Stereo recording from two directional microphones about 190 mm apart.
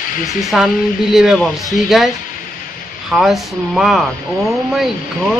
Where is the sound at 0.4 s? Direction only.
Centre (ahead or behind).